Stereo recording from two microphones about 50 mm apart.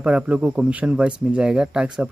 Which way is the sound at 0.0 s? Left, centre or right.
Right.